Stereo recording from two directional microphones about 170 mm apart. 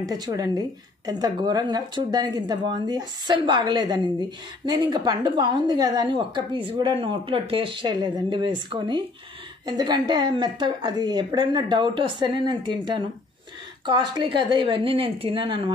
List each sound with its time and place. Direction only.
0.0 s a woman's voice: 25° right (ahead or behind)